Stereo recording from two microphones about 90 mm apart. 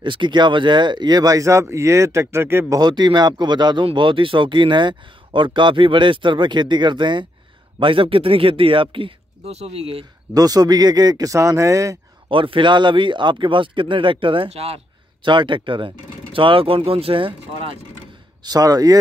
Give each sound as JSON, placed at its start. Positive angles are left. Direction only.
{"t": 0.0, "sound": "speech", "side_deg": -65}
{"t": 2.8, "sound": "speech", "side_deg": -55}
{"t": 7.8, "sound": "speech", "side_deg": -75}
{"t": 9.7, "sound": "speech", "side_deg": -90}
{"t": 10.3, "sound": "speech", "side_deg": -45}
{"t": 12.3, "sound": "speech", "side_deg": -75}
{"t": 15.2, "sound": "speech", "side_deg": -65}
{"t": 16.3, "sound": "speech", "side_deg": -85}
{"t": 18.4, "sound": "speech", "side_deg": -45}